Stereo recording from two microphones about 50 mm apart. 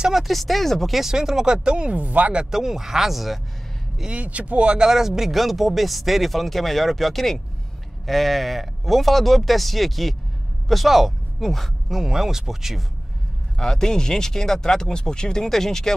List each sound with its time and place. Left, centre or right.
0.1 s speech: centre
0.9 s speech: centre; by 2.4 s right
2.5 s speech: centre
4.0 s speech: right
4.7 s speech: centre
13.6 s speech: centre